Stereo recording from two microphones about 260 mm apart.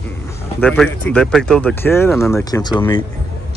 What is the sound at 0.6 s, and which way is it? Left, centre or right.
Speech, centre.